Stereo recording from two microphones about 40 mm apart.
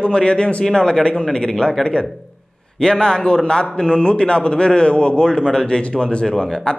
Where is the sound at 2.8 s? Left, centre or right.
Left.